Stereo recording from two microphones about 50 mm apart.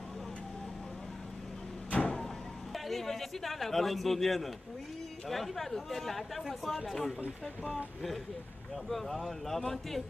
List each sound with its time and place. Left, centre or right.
1.9 s vehicle: left
2.7 s a man's voice: centre
8.8 s speech: centre